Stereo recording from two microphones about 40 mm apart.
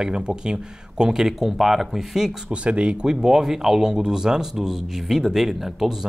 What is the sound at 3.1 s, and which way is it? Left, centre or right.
Speech, centre.